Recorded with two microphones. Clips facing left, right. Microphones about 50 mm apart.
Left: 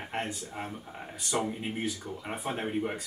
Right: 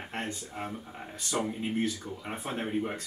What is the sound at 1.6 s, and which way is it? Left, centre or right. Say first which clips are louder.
Speech: right 3 dB; centre.